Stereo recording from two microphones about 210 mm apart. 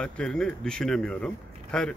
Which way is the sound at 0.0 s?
5° left (ahead or behind).